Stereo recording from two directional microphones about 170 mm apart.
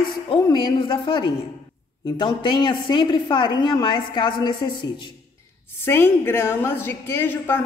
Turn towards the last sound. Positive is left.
turn(degrees=15)  # may be behind; listen again after turning